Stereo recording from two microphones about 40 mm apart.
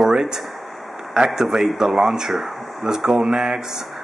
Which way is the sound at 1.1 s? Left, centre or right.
Centre.